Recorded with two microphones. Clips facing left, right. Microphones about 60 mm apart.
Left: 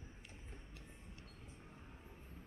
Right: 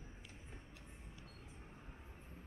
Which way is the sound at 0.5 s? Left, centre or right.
Centre.